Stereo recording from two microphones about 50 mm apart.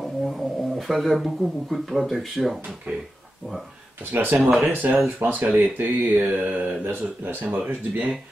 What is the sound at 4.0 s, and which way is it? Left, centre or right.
Speech, right.